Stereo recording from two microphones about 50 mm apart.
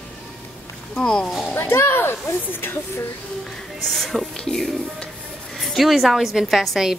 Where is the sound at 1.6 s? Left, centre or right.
Left.